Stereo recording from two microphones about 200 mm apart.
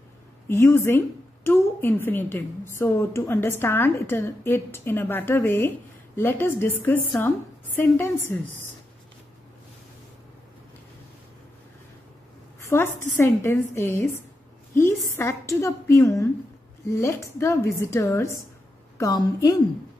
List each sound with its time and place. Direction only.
0.5 s a woman's voice: 15° left (ahead or behind)
12.5 s a sound: 10° left (ahead or behind)
13.1 s a woman's voice: 15° left (ahead or behind)